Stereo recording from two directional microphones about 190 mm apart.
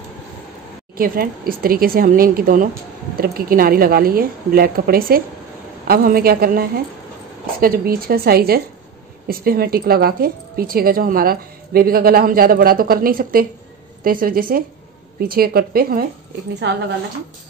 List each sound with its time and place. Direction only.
0.9 s speech: 50° right (ahead or behind)
16.5 s a woman's voice: 65° right (ahead or behind)